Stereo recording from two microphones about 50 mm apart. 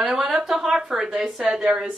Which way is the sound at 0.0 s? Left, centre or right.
Centre.